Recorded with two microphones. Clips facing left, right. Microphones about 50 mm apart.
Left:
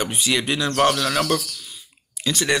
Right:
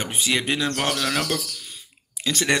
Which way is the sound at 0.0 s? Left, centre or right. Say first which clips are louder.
Left 2 dB; right.